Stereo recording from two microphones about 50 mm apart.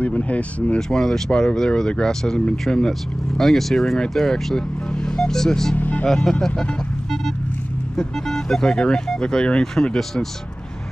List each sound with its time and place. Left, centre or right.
0.0 s speech: left
0.7 s speech: centre
5.8 s speech: left
7.9 s speech: centre